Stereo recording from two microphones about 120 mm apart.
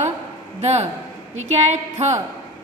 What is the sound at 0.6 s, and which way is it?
A man's voice, 65° right (ahead or behind).